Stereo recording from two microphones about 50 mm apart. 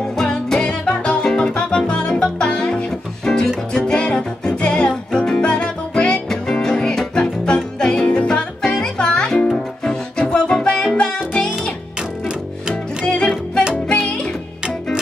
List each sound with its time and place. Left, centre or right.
0.1 s music: centre
13.0 s music: centre